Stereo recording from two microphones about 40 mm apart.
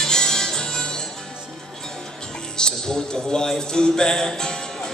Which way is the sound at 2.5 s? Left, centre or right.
Centre.